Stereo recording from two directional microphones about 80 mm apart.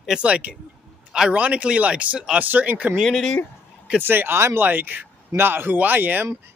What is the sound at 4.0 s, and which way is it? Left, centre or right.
A man's voice, right.